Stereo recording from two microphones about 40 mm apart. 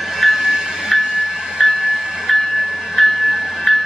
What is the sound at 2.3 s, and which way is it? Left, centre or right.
Train, centre.